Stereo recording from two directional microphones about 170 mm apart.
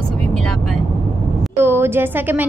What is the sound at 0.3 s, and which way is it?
Vehicle, 5° left (ahead or behind).